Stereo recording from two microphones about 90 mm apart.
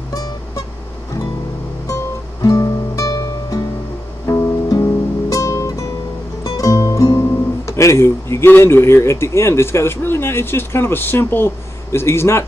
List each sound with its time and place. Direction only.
0.1 s music: 40° left (ahead or behind)
2.4 s music: 40° left (ahead or behind)
4.3 s guitar: 40° left (ahead or behind)
5.3 s music: 40° left (ahead or behind)
6.4 s speech: 40° left (ahead or behind)